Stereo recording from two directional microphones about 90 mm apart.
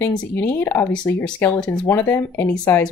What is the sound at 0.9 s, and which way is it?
Speech, 10° left (ahead or behind).